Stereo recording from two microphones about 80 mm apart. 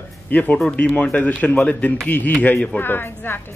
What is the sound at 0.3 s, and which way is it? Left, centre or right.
A man's voice, centre.